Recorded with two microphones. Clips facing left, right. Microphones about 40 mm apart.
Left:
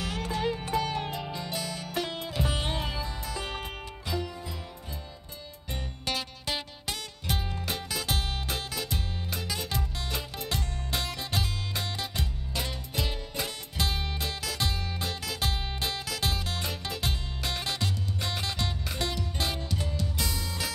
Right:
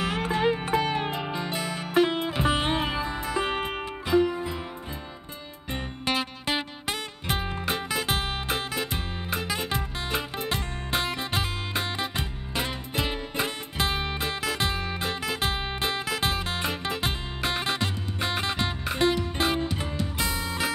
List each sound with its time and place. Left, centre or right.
0.0 s music: right
5.7 s music: right